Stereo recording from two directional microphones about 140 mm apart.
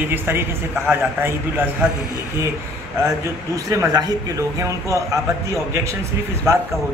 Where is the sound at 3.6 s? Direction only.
25° right (ahead or behind).